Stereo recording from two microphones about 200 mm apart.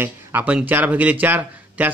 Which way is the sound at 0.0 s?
10° right (ahead or behind).